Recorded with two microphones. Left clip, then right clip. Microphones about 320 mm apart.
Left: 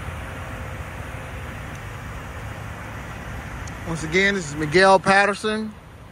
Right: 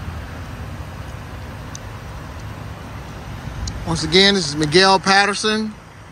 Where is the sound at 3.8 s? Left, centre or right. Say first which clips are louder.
Right 6 dB; centre.